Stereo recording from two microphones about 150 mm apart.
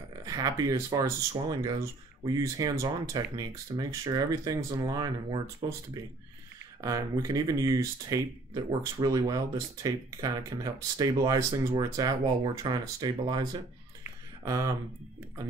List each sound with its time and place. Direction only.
0.2 s speech: 25° right (ahead or behind)
6.8 s speech: 20° right (ahead or behind)